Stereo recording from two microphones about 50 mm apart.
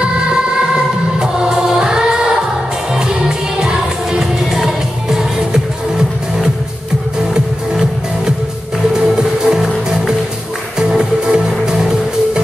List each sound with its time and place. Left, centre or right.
1.2 s music: centre
8.9 s music: centre
10.8 s music: centre